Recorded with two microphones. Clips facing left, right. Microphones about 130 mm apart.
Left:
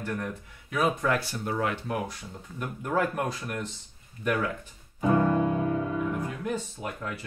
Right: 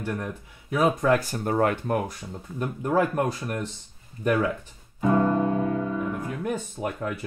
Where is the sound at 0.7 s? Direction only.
35° right (ahead or behind).